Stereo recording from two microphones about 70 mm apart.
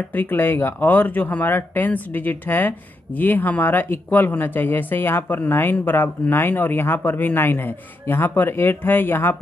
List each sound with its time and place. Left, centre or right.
0.1 s speech: left